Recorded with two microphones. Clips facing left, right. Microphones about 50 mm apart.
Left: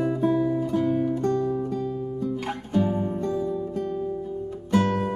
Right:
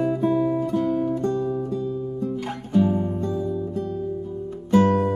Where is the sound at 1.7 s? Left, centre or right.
Left.